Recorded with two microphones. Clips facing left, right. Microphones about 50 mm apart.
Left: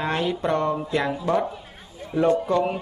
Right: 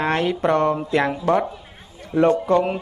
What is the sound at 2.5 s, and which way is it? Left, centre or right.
Speech, right.